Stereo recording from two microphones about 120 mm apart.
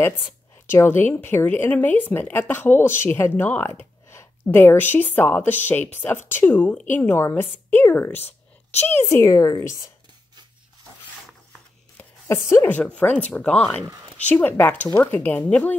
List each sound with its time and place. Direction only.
0.7 s a woman's voice: 20° left (ahead or behind)
12.3 s a woman's voice: 20° left (ahead or behind)